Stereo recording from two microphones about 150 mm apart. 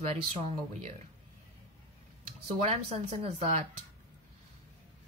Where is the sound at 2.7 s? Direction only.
45° right (ahead or behind).